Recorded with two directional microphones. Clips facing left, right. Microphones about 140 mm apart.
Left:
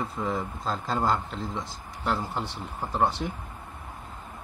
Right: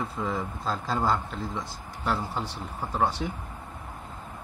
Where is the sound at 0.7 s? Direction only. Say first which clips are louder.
Even; centre (ahead or behind).